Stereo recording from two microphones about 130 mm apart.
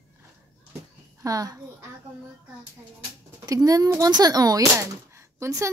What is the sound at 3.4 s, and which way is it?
Speech, 25° right (ahead or behind).